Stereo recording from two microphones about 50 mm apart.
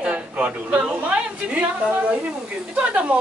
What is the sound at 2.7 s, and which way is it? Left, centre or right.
Speech, right.